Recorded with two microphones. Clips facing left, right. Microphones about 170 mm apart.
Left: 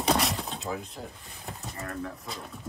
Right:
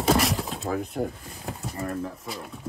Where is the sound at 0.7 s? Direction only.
60° right (ahead or behind).